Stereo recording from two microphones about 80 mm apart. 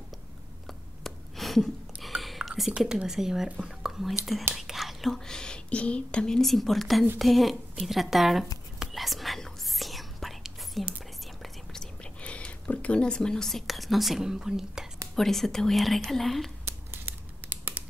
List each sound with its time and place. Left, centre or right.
0.7 s a sound: centre
2.8 s a woman's voice: centre
8.7 s whispering: centre
15.1 s a woman's voice: centre
16.6 s scissors: right